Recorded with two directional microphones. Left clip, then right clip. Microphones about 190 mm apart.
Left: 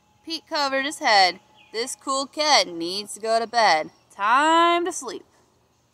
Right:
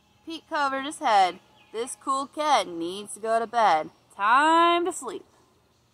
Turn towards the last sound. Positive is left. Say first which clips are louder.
# left 2 dB
turn(degrees=15)  # may be behind; listen again after turning